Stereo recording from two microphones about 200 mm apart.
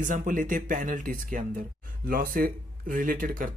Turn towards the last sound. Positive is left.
turn(degrees=-40)  # may be behind; listen again after turning